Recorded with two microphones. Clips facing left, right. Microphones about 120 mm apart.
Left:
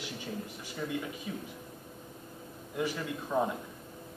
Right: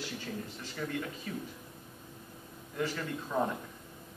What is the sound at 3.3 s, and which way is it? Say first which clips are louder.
Speech: left 2 dB; 15° left (ahead or behind).